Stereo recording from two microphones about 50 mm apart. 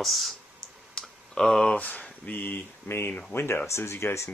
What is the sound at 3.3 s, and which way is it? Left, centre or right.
Speech, left.